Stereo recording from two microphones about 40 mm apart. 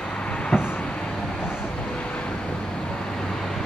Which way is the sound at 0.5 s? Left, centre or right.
Centre.